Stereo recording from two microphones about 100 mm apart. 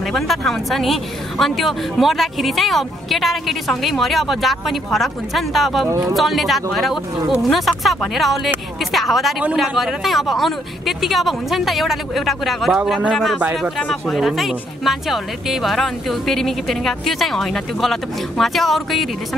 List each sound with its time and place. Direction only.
0.1 s speech: 5° left (ahead or behind)
5.9 s speech: 35° right (ahead or behind)
6.1 s speech: centre (ahead or behind)